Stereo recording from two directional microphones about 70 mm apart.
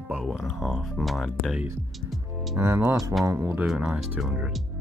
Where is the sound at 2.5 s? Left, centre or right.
Right.